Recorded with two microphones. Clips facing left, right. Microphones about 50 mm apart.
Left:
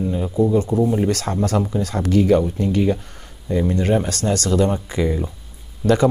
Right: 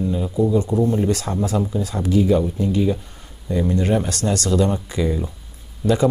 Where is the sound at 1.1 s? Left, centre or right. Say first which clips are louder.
Left 1 dB; left.